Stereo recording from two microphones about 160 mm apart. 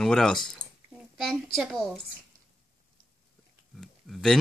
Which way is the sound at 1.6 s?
Centre (ahead or behind).